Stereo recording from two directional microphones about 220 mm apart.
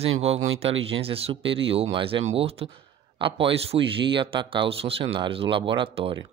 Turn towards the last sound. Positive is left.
turn(degrees=-25)  # may be behind; listen again after turning